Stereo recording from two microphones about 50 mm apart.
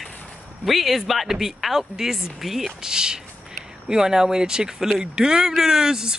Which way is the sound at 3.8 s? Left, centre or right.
Centre.